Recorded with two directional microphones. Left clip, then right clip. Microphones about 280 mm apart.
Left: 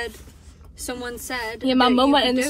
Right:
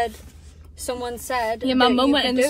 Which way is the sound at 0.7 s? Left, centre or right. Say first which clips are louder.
Right 3 dB; centre.